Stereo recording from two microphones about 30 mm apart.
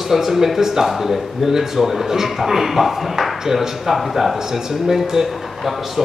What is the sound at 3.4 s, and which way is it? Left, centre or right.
Speech, centre.